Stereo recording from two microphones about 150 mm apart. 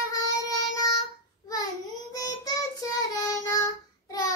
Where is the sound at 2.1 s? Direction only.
25° left (ahead or behind).